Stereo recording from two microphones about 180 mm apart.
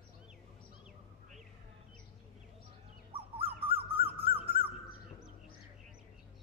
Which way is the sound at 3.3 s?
30° right (ahead or behind).